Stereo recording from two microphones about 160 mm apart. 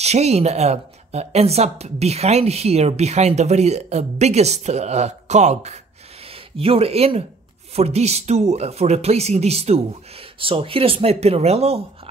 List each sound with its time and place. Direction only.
0.0 s speech: 40° right (ahead or behind)